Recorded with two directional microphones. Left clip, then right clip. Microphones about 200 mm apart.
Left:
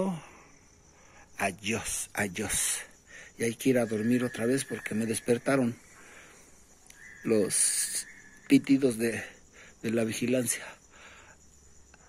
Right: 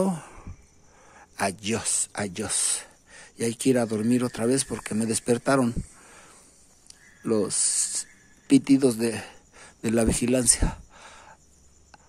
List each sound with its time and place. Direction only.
0.0 s sigh: 25° right (ahead or behind)
1.1 s speech: 20° right (ahead or behind)
7.2 s speech: 15° right (ahead or behind)